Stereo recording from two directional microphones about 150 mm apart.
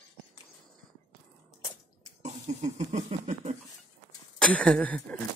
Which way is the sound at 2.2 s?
50° right (ahead or behind).